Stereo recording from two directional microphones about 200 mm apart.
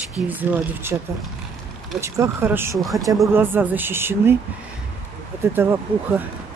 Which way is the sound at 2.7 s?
Centre (ahead or behind).